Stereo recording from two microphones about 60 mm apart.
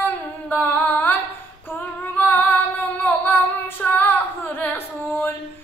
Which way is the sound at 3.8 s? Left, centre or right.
Left.